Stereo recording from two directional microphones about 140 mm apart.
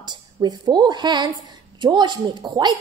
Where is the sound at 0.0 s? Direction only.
30° right (ahead or behind).